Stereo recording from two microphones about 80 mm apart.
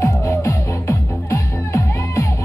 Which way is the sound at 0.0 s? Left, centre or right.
Left.